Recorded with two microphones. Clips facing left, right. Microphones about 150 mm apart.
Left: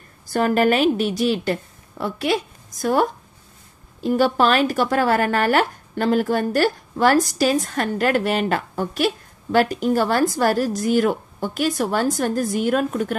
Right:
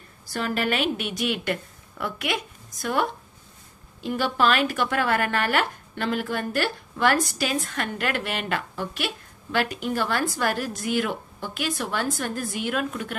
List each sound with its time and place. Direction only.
0.3 s speech: 45° left (ahead or behind)